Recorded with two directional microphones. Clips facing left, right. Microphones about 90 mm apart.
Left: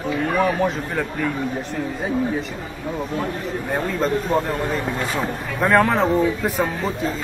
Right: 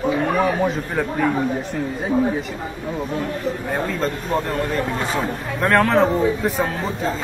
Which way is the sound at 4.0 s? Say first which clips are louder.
Left 2 dB; 5° left (ahead or behind).